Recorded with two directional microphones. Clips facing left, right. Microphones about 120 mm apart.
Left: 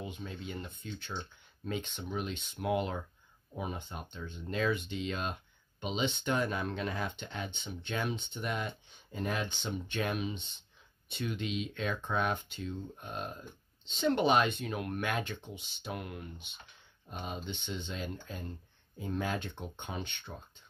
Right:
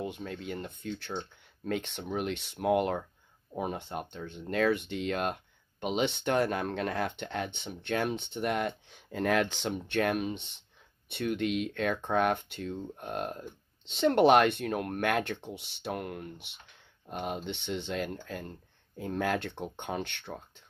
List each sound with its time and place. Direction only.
0.0 s speech: 60° right (ahead or behind)